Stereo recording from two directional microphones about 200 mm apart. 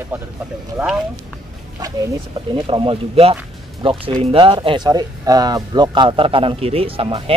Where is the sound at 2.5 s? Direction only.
25° right (ahead or behind).